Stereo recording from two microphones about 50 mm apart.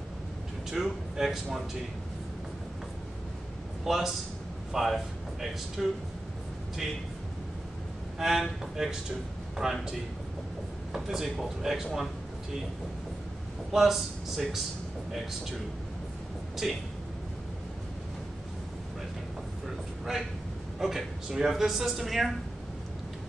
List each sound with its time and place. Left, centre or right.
0.7 s a woman's voice: centre
3.8 s speech: centre
8.2 s speech: centre
10.9 s a woman's voice: centre
13.7 s speech: centre
16.6 s a woman's voice: centre
20.8 s a woman's voice: centre